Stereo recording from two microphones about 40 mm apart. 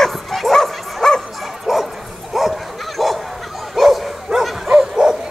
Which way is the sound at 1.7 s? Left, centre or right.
Centre.